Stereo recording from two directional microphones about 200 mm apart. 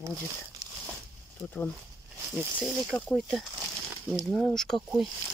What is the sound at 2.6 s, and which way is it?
Speech, 5° left (ahead or behind).